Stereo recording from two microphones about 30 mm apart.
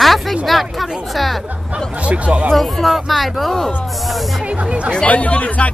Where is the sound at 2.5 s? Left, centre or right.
Centre.